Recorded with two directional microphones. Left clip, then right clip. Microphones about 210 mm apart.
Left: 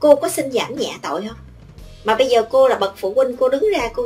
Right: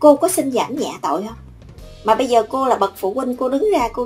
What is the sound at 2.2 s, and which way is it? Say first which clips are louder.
Speech: left 2 dB; 30° right (ahead or behind).